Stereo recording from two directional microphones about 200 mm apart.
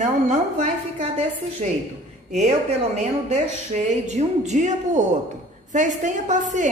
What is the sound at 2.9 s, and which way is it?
A woman's voice, 35° right (ahead or behind).